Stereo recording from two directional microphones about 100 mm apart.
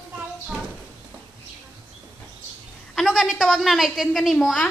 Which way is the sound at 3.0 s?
Centre (ahead or behind).